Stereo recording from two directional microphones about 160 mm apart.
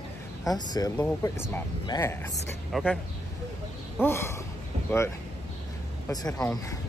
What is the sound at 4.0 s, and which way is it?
Speech, 15° left (ahead or behind).